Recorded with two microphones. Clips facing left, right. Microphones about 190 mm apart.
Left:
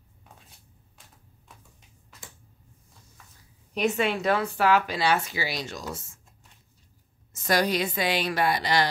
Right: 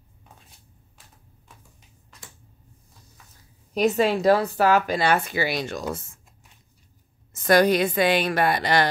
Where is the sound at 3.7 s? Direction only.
40° right (ahead or behind); by 6.0 s 55° right (ahead or behind).